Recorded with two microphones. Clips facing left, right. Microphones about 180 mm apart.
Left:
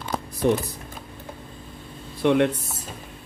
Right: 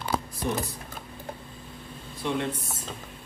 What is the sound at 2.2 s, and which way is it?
Speech, 65° left (ahead or behind).